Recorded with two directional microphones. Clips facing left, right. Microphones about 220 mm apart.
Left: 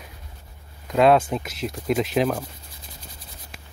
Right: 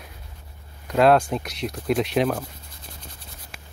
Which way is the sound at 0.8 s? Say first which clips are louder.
Even; centre (ahead or behind).